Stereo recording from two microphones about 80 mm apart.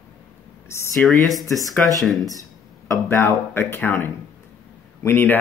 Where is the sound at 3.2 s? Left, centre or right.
Left.